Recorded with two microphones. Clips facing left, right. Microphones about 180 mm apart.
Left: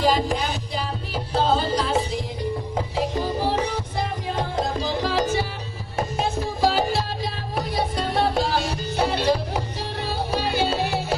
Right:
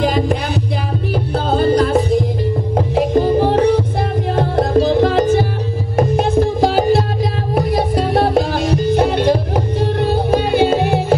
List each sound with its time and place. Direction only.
0.0 s music: 55° right (ahead or behind)